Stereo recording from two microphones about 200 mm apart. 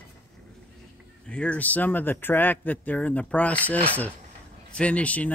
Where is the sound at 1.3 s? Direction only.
5° left (ahead or behind).